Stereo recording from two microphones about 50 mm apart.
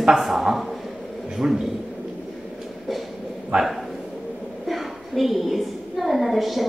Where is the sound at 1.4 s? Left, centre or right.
Centre.